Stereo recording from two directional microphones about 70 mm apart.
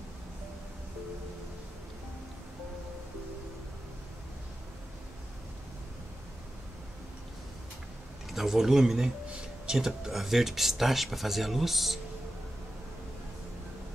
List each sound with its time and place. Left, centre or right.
8.3 s speech: centre